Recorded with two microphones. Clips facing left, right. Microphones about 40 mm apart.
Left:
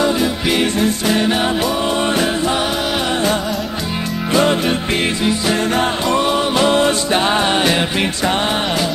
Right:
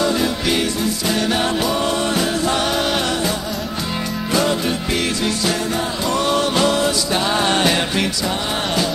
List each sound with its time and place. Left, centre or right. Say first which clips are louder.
1.0 s music: even; left
4.3 s music: left 4 dB; left
6.1 s music: even; centre
7.4 s music: left 2 dB; centre